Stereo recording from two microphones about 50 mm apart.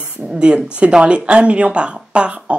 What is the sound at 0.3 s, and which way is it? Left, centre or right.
Speech, centre.